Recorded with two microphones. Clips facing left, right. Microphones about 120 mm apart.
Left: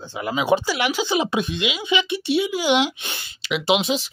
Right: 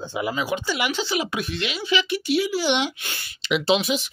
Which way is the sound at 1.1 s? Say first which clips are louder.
Left 4 dB; 25° left (ahead or behind).